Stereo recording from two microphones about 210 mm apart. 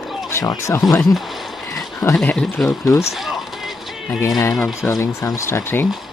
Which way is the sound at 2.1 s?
Centre (ahead or behind).